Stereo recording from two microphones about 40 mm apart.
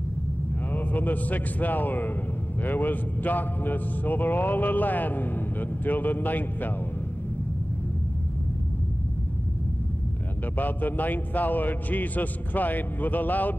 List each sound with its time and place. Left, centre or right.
0.7 s a man's voice: left
10.5 s a man's voice: left